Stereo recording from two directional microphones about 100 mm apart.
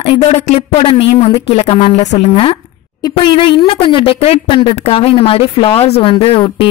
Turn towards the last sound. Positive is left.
turn(degrees=60)  # may be behind; listen again after turning